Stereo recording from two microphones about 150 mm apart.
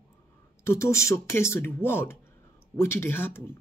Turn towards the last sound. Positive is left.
turn(degrees=15)  # may be behind; listen again after turning